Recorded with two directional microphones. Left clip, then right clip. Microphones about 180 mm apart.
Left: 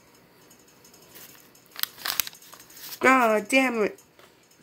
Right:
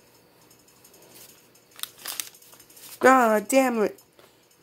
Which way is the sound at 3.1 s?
15° right (ahead or behind).